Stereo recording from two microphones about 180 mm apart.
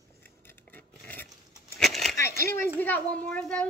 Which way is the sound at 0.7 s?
10° left (ahead or behind).